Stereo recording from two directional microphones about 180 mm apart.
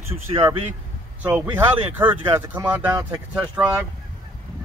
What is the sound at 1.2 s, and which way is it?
Speech, 10° right (ahead or behind).